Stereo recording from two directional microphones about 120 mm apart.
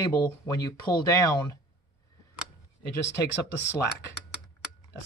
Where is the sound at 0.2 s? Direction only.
30° left (ahead or behind).